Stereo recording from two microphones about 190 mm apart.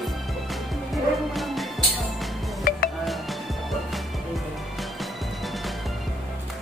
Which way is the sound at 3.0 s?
Centre (ahead or behind).